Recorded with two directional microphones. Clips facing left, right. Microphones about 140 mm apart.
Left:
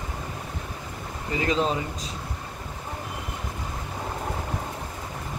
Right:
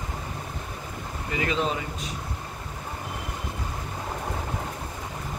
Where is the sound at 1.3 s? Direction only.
35° left (ahead or behind).